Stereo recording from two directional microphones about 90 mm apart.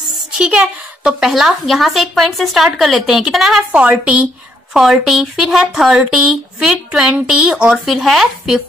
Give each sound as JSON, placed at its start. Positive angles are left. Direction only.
{"t": 0.4, "sound": "a woman's voice", "side_deg": -10}
{"t": 3.7, "sound": "speech", "side_deg": -15}
{"t": 4.7, "sound": "a woman's voice", "side_deg": -5}